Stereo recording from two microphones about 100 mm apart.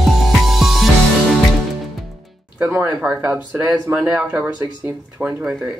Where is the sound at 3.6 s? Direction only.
15° right (ahead or behind).